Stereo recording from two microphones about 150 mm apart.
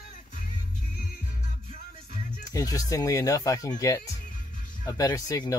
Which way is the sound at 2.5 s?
25° left (ahead or behind).